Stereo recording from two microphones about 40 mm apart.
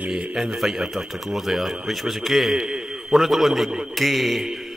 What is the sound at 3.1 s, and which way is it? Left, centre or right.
A man's voice, centre.